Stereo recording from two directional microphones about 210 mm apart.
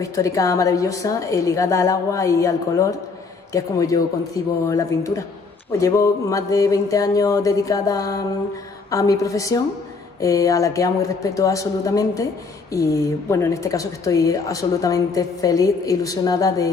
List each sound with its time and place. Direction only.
0.0 s speech: 15° left (ahead or behind)